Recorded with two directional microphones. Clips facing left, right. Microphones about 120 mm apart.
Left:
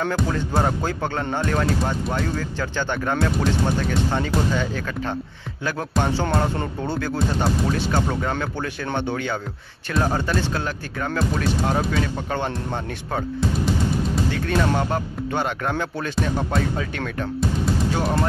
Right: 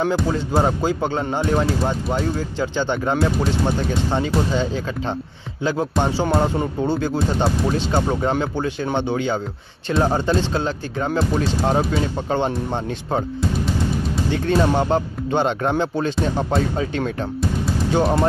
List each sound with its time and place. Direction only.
0.0 s speech: 5° right (ahead or behind)
0.6 s speech: 15° right (ahead or behind)
14.3 s speech: 25° right (ahead or behind)